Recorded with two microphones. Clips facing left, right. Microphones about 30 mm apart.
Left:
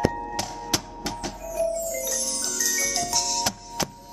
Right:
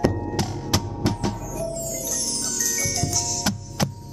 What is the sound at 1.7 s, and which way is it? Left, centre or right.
Marimba, right.